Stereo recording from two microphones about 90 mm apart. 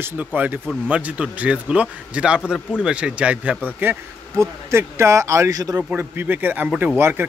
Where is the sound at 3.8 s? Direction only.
25° right (ahead or behind); by 5.8 s 40° right (ahead or behind).